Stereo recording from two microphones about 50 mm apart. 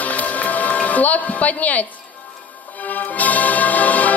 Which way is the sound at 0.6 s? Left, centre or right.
Left.